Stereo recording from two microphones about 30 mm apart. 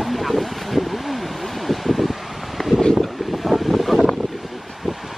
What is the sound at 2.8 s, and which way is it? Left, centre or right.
Wind, left.